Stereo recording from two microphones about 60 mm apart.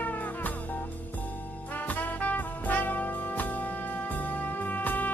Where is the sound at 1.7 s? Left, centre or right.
Left.